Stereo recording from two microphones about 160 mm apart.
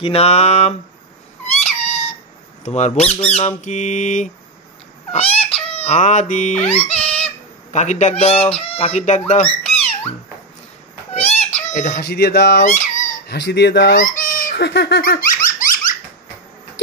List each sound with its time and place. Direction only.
0.0 s speech: 40° left (ahead or behind)
1.4 s cat: 45° left (ahead or behind)
2.6 s speech: 45° left (ahead or behind)
5.1 s speech: 35° left (ahead or behind)
9.3 s cat: 40° left (ahead or behind)
11.1 s a sound: 40° left (ahead or behind)
11.7 s speech: 55° left (ahead or behind); by 12.6 s 90° left
12.6 s a sound: 50° left (ahead or behind)
13.3 s speech: 90° left
13.9 s squeak: 55° left (ahead or behind)